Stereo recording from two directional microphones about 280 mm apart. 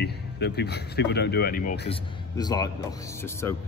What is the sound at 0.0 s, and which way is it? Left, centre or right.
Speech, left.